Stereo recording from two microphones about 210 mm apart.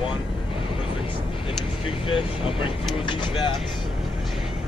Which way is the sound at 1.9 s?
25° left (ahead or behind).